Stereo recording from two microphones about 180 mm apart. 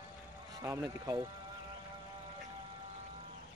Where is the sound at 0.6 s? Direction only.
15° right (ahead or behind).